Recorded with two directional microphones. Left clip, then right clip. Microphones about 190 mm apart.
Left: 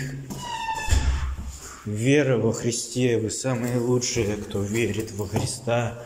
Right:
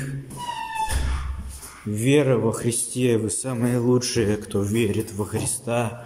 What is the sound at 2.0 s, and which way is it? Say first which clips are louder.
Speech: right 1 dB; 15° right (ahead or behind).